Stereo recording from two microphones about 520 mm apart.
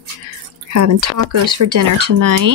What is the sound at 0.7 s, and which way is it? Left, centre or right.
Speech, right.